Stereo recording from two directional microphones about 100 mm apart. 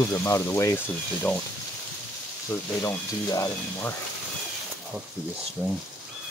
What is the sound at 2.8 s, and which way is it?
Speech, 35° left (ahead or behind).